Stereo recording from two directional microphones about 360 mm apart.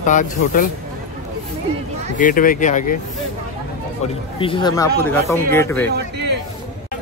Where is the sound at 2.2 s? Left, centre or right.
Left.